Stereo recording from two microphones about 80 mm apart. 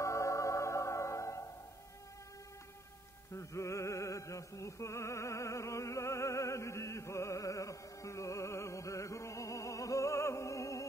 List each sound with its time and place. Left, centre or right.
0.0 s music: left
3.3 s music: left